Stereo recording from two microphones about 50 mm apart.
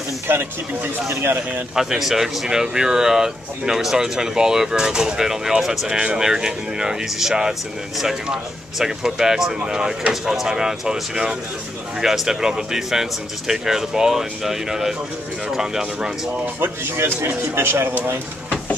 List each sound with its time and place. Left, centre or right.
1.8 s speech: centre
16.5 s speech: right